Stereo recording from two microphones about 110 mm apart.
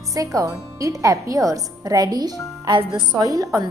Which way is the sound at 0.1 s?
30° right (ahead or behind).